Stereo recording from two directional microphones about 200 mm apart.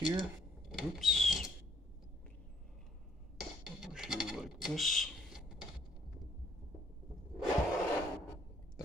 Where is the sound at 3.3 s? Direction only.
Centre (ahead or behind).